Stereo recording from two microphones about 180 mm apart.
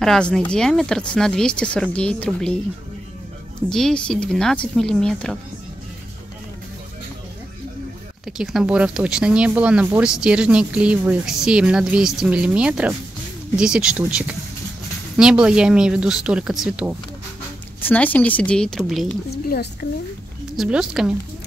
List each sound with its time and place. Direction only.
0.0 s speech: 5° left (ahead or behind)
3.7 s speech: 5° left (ahead or behind)
8.3 s speech: 5° right (ahead or behind)
17.7 s a woman's voice: 10° left (ahead or behind)
19.3 s a woman's voice: 60° left (ahead or behind)
20.5 s speech: 5° right (ahead or behind)